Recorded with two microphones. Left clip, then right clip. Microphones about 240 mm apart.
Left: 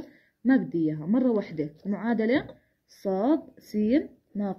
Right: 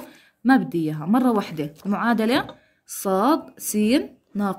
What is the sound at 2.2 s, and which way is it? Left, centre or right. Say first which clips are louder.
Speech: right 4 dB; right.